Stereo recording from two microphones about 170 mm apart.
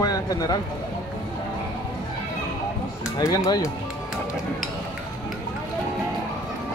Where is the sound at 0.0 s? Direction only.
20° left (ahead or behind).